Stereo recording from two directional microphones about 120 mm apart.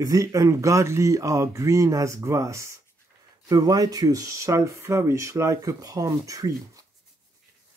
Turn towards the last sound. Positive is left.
turn(degrees=-30)  # may be behind; listen again after turning